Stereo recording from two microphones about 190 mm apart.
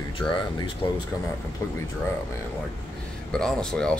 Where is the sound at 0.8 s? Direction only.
25° left (ahead or behind).